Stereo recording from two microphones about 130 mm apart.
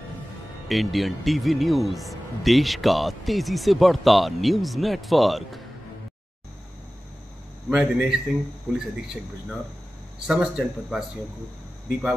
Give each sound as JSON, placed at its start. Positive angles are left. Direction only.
{"t": 0.7, "sound": "speech", "side_deg": 0}
{"t": 7.7, "sound": "speech", "side_deg": -5}